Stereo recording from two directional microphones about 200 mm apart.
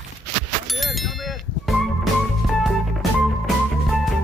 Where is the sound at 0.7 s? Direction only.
Centre (ahead or behind).